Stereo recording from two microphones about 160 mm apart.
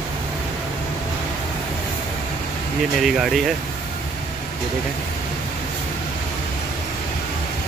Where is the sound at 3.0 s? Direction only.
Centre (ahead or behind).